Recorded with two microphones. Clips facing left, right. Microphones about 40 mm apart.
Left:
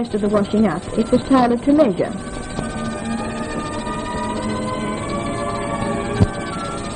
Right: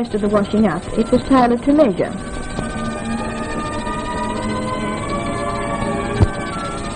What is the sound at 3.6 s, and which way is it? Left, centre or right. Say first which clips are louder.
Music: right 2 dB; centre.